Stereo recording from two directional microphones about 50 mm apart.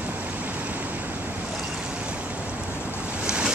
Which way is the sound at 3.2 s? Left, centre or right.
Centre.